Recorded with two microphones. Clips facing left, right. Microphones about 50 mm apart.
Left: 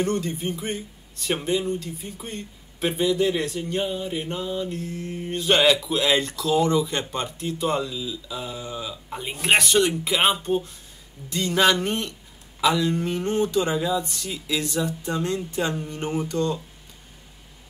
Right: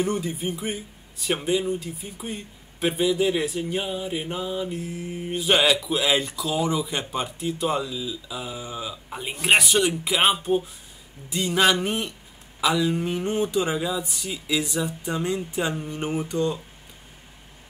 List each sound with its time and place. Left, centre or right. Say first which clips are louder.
0.0 s a man's voice: left 1 dB; centre